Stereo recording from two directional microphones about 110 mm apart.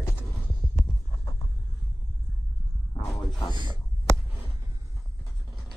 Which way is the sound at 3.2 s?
40° left (ahead or behind).